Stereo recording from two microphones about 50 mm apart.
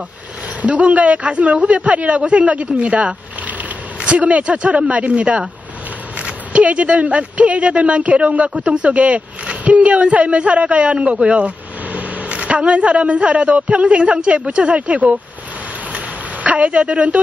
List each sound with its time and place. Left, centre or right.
0.6 s speech: right
16.4 s speech: right